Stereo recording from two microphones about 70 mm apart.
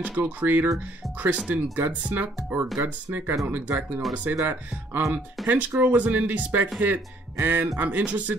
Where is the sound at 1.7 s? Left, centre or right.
Right.